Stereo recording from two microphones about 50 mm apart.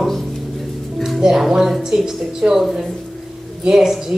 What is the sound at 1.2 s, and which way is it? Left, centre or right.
Speech, centre.